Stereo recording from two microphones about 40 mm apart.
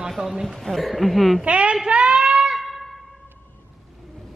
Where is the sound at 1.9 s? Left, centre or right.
Right.